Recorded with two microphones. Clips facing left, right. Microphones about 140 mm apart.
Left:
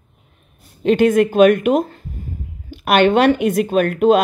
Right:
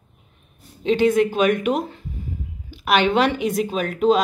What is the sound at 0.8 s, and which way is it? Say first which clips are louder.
A woman's voice: left 4 dB; 55° left (ahead or behind).